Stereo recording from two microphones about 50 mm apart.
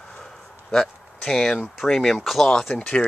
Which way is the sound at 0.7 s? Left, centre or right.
Centre.